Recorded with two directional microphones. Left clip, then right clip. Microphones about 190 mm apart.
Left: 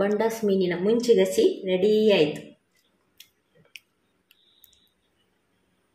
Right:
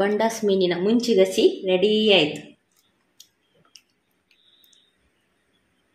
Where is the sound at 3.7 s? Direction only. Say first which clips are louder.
Left 6 dB; 40° left (ahead or behind).